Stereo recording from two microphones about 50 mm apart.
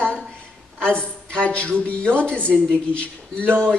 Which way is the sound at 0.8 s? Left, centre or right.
Left.